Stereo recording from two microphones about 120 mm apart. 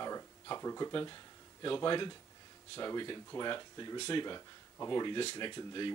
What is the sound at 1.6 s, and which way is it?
Speech, 40° left (ahead or behind).